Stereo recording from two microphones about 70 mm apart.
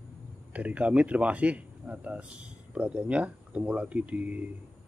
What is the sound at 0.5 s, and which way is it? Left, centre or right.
Speech, centre.